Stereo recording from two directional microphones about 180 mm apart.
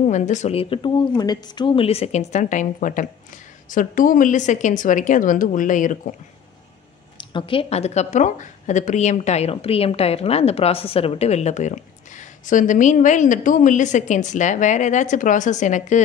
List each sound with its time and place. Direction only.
0.0 s speech: 40° left (ahead or behind)
7.2 s speech: 30° left (ahead or behind)